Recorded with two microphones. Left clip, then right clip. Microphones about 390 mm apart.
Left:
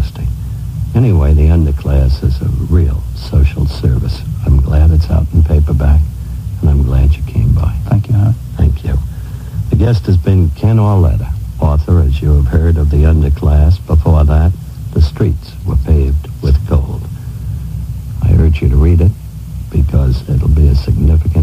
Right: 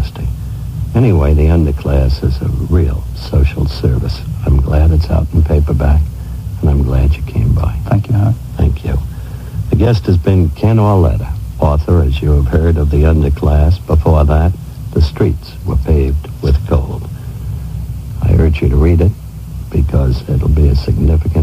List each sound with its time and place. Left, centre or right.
0.9 s speech: left
6.6 s a sound: left
9.7 s speech: left
18.2 s speech: left